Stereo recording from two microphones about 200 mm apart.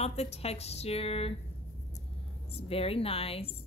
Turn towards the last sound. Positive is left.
turn(degrees=30)  # may be behind; listen again after turning